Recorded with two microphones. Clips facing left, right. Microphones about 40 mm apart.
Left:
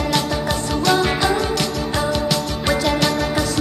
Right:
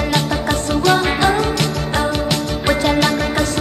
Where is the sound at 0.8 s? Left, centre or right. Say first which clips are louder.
Right 2 dB; centre.